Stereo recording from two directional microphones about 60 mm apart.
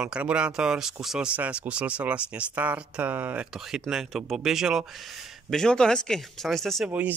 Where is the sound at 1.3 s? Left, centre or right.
Right.